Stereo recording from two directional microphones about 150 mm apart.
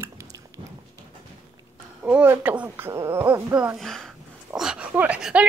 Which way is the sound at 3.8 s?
5° left (ahead or behind).